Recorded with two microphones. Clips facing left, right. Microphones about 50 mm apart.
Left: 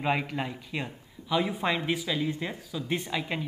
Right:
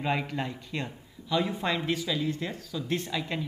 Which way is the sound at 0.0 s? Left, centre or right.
Centre.